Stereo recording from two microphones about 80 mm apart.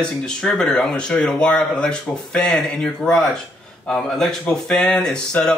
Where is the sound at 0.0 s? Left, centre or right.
Centre.